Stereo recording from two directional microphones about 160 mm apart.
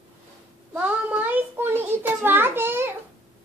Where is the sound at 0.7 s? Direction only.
10° right (ahead or behind).